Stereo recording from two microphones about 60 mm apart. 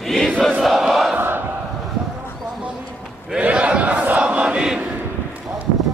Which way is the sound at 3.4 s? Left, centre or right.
Right.